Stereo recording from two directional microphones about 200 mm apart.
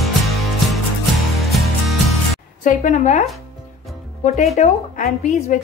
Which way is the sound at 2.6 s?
40° left (ahead or behind).